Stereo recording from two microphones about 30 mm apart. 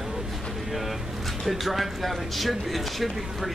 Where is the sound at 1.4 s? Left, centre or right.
Centre.